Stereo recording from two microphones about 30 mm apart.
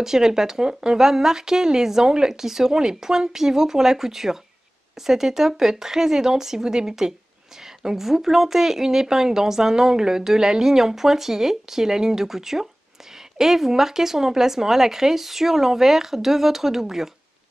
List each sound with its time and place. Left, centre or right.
0.0 s speech: centre